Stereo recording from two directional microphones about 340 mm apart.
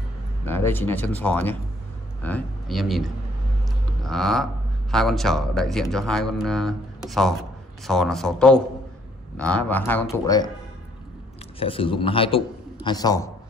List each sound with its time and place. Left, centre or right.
0.5 s speech: centre
4.0 s a sound: centre
4.9 s speech: centre
11.6 s a man's voice: centre